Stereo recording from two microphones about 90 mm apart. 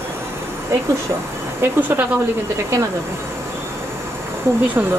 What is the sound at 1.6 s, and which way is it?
Speech, 25° right (ahead or behind).